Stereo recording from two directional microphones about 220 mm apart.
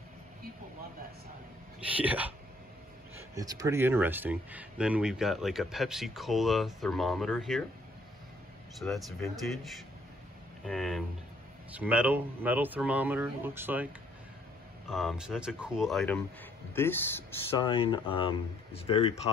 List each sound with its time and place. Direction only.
1.8 s speech: 5° right (ahead or behind)
3.3 s speech: 15° right (ahead or behind); by 7.6 s centre (ahead or behind)
8.7 s speech: centre (ahead or behind)
14.9 s speech: centre (ahead or behind)
17.6 s speech: 20° left (ahead or behind)